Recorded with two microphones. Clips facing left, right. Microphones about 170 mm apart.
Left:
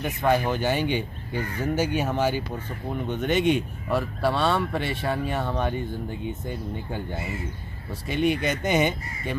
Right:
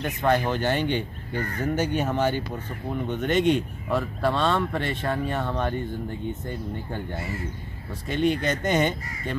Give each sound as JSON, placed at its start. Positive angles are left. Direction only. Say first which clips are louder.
{"t": 0.0, "sound": "speech", "louder": "even", "side_deg": 5}
{"t": 1.3, "sound": "speech", "louder": "even", "side_deg": -50}
{"t": 1.6, "sound": "speech", "louder": "even", "side_deg": 5}